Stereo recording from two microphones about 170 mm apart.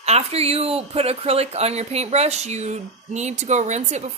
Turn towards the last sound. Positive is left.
turn(degrees=-45)  # may be behind; listen again after turning